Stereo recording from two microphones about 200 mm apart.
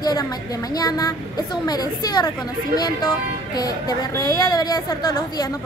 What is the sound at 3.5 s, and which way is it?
Speech, 20° left (ahead or behind).